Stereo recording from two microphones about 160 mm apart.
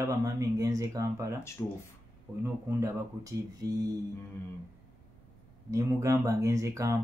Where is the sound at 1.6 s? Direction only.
15° left (ahead or behind).